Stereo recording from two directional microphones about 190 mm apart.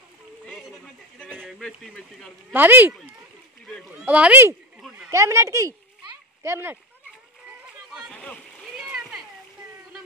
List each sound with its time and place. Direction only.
0.5 s a sound: centre (ahead or behind)
1.4 s speech: centre (ahead or behind)
2.5 s speech: 10° right (ahead or behind)
4.0 s speech: 10° right (ahead or behind)
4.8 s a sound: 5° right (ahead or behind)
5.1 s speech: 15° right (ahead or behind)
7.9 s splash: 5° left (ahead or behind)